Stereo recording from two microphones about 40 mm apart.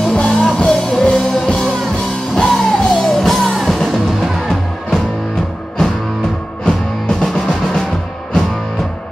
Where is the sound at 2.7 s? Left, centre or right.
Centre.